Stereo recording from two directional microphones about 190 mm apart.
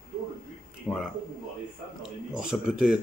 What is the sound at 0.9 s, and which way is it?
Speech, 5° left (ahead or behind).